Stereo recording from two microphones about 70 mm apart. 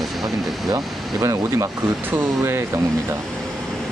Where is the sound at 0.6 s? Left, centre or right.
Right.